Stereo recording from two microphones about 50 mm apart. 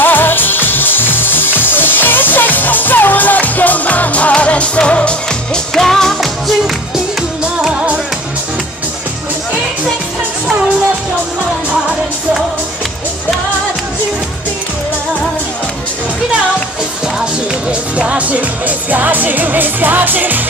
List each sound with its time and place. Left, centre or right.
0.0 s music: left
5.8 s music: centre
17.6 s music: right